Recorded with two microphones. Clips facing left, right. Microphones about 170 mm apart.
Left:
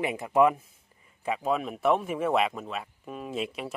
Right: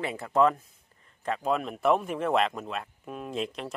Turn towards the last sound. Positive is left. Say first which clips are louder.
# even
turn(degrees=5)  # may be behind; listen again after turning